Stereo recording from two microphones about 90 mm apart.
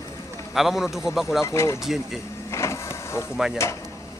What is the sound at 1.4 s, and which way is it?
Speech, 30° left (ahead or behind).